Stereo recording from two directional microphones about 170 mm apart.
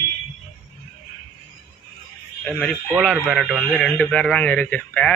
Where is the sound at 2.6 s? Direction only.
5° left (ahead or behind).